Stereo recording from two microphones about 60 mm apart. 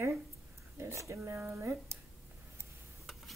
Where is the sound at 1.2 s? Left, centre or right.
Right.